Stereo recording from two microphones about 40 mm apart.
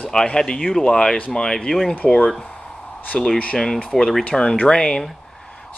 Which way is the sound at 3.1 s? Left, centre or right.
Left.